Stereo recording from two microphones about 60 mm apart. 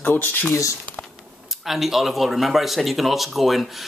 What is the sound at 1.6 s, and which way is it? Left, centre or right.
Speech, centre.